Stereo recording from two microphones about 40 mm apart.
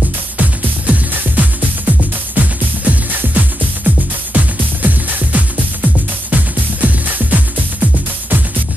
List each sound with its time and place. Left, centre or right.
0.4 s music: right